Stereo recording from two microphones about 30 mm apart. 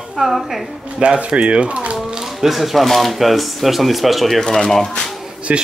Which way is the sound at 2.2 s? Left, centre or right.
Centre.